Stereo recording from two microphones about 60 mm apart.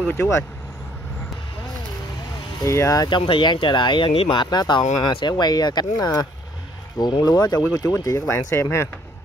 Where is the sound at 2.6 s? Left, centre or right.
Left.